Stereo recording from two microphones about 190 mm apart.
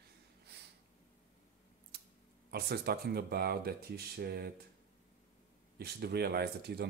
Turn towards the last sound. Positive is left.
turn(degrees=-60)  # may be behind; listen again after turning